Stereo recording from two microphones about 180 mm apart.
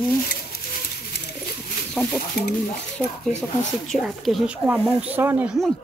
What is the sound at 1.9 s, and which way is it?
Bird, 5° left (ahead or behind).